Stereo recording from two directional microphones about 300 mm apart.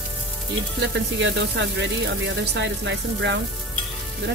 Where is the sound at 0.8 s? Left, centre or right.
Right.